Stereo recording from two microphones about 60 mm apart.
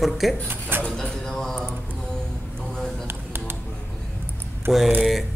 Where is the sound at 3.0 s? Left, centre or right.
Right.